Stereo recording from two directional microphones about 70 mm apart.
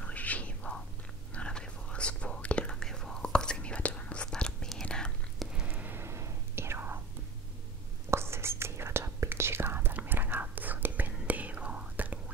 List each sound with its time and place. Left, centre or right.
0.0 s whispering: left
5.7 s a sound: right
6.0 s whispering: right
8.1 s whispering: right